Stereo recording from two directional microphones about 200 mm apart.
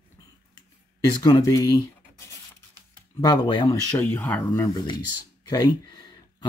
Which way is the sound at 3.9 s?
10° left (ahead or behind).